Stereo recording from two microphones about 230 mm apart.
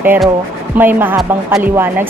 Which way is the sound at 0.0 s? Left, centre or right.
Centre.